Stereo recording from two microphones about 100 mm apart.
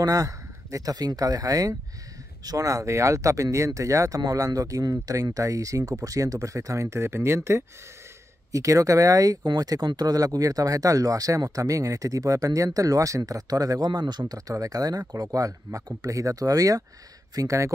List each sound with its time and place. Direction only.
0.0 s speech: 35° right (ahead or behind)
14.2 s speech: 35° right (ahead or behind)